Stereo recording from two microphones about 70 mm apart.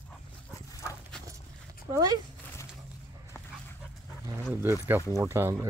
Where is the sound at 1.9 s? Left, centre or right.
Right.